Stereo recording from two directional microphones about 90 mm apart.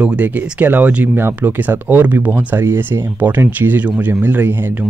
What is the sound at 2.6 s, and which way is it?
Speech, 25° right (ahead or behind).